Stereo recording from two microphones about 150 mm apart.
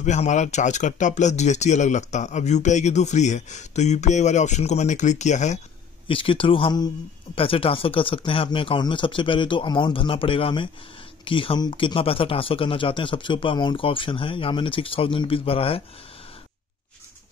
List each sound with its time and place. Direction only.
0.0 s speech: 50° left (ahead or behind)
6.0 s speech: 35° left (ahead or behind)